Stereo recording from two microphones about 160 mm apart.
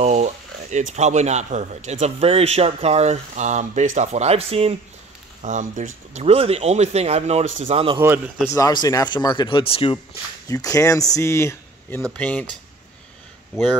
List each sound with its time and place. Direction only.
0.0 s speech: 45° right (ahead or behind)
5.4 s speech: 50° right (ahead or behind)
7.6 s speech: 35° right (ahead or behind)
8.5 s speech: 20° left (ahead or behind)
10.5 s speech: 20° left (ahead or behind)